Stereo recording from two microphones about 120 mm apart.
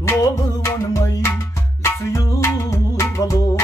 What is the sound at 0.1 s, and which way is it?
Music, 25° left (ahead or behind).